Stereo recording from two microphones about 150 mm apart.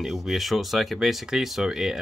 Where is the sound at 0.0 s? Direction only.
Centre (ahead or behind).